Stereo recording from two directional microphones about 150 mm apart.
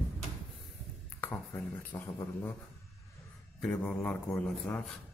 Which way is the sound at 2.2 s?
20° left (ahead or behind).